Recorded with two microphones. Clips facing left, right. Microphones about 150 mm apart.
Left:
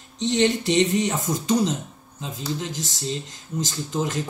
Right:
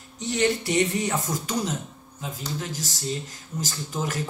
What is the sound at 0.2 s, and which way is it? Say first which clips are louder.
A man's voice: left 3 dB; 25° left (ahead or behind).